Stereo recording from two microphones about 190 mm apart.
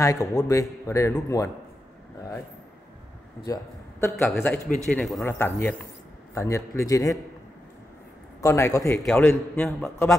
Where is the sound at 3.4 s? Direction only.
15° left (ahead or behind).